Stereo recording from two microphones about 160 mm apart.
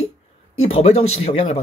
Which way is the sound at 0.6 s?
40° left (ahead or behind).